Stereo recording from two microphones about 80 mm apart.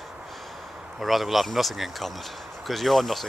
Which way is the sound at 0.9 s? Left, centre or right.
Centre.